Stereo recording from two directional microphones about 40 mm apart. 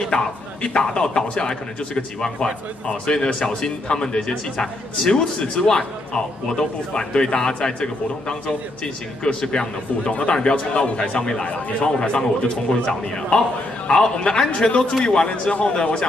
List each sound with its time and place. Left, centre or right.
0.0 s speech: left